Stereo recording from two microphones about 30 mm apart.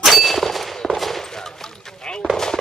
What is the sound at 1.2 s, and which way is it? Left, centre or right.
Speech, centre.